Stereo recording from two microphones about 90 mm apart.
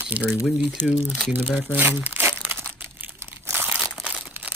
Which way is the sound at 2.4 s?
20° right (ahead or behind).